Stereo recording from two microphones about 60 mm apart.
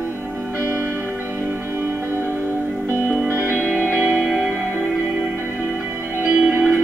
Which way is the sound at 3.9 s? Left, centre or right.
Centre.